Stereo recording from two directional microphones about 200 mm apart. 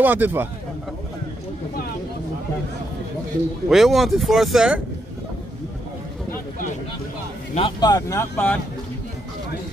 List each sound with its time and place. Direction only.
0.0 s speech: 10° right (ahead or behind)
3.6 s speech: centre (ahead or behind)
7.5 s speech: 20° left (ahead or behind)